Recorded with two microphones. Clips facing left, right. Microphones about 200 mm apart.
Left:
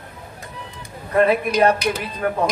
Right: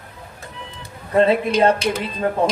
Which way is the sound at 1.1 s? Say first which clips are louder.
Right 1 dB; 25° right (ahead or behind).